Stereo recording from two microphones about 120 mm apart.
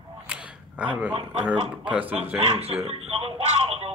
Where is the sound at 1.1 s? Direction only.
50° right (ahead or behind).